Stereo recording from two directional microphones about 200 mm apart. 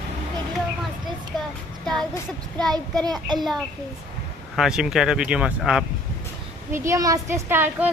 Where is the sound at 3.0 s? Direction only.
20° right (ahead or behind).